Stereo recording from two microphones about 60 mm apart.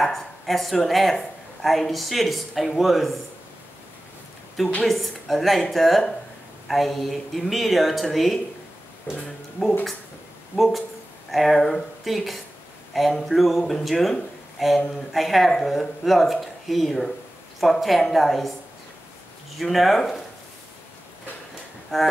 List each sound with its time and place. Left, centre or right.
0.0 s speech: centre
4.8 s speech: centre
9.1 s speech: left
9.6 s speech: centre
10.5 s speech: centre
19.6 s speech: centre
21.9 s speech: centre